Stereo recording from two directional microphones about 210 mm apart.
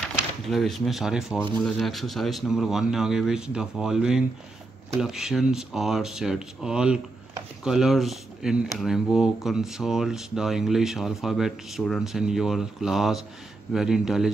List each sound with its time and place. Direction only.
0.1 s speech: centre (ahead or behind)